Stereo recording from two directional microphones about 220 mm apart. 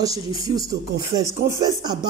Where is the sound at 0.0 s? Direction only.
15° right (ahead or behind).